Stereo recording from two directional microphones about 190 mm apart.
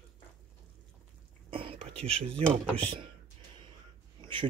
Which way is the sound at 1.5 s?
30° right (ahead or behind).